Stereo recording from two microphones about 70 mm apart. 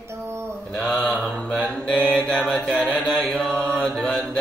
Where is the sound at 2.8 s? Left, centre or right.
Centre.